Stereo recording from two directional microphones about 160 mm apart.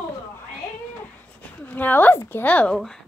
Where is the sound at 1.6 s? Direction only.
10° left (ahead or behind).